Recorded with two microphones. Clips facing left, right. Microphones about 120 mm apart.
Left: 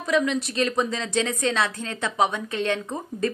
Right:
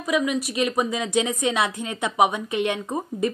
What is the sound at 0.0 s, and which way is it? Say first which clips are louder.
Speech: even; 10° right (ahead or behind).